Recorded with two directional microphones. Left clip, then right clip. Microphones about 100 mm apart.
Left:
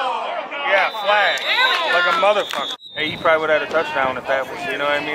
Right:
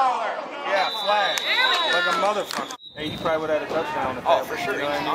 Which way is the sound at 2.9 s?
15° left (ahead or behind).